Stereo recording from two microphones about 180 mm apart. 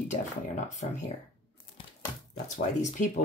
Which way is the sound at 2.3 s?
40° left (ahead or behind).